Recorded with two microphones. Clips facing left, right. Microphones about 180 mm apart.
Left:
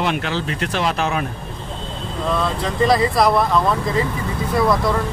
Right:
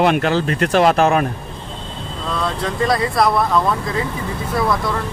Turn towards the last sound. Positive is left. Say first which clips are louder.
# left 1 dB
turn(degrees=0)  # may be behind; listen again after turning